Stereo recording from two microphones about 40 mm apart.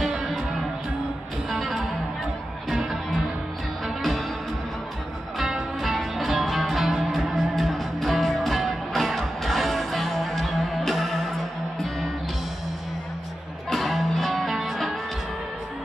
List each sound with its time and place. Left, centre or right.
0.0 s music: centre
1.5 s music: centre
5.8 s music: centre
13.7 s music: centre